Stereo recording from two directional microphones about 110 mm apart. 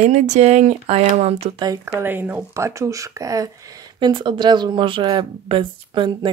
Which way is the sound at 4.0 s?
45° right (ahead or behind).